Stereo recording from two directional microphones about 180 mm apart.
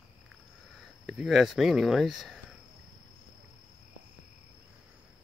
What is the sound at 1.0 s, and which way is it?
Speech, centre (ahead or behind).